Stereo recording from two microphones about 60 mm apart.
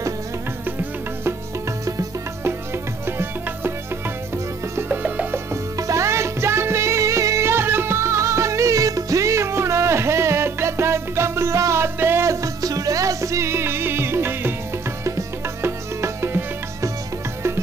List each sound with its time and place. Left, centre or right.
2.4 s music: right
4.8 s music: right
5.8 s music: right
12.3 s music: right
15.0 s music: right
15.6 s music: right